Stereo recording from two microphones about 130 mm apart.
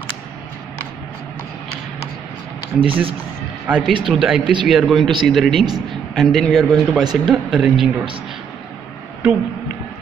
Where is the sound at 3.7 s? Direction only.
10° right (ahead or behind).